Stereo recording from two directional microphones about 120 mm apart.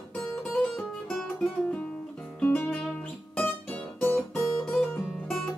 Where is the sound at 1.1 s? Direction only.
5° left (ahead or behind).